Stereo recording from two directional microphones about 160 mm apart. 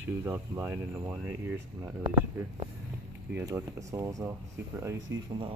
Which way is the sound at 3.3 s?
20° right (ahead or behind).